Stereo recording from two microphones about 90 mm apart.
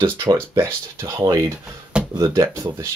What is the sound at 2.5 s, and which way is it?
Speech, 30° right (ahead or behind).